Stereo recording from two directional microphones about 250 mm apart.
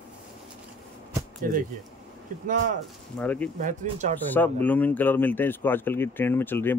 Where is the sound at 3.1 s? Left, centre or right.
Centre.